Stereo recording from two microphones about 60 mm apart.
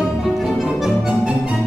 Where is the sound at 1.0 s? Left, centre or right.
Centre.